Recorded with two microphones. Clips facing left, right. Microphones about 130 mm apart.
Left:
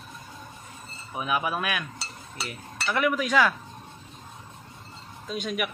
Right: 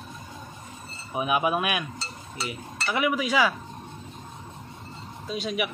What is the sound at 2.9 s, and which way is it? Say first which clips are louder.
Speech: left 1 dB; 10° right (ahead or behind).